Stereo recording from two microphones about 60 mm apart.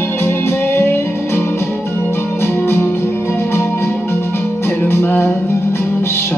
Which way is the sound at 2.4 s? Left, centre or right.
Left.